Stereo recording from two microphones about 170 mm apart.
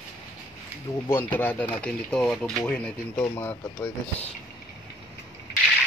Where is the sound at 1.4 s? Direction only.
10° left (ahead or behind).